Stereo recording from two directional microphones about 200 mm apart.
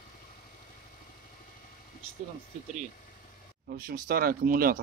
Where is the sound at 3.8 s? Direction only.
45° right (ahead or behind).